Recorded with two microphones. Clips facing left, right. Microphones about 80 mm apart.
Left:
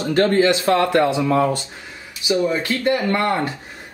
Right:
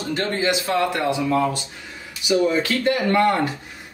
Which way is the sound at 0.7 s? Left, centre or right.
Left.